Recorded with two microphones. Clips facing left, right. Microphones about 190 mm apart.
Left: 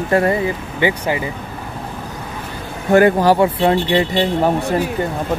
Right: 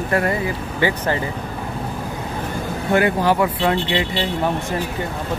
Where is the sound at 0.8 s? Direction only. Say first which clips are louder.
Left 2 dB; 15° left (ahead or behind).